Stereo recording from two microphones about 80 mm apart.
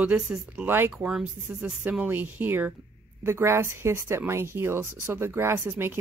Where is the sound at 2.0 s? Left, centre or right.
Right.